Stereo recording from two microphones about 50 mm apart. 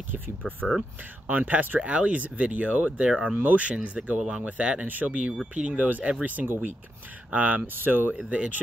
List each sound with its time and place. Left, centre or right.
1.3 s speech: right
1.8 s speech: right
8.3 s speech: right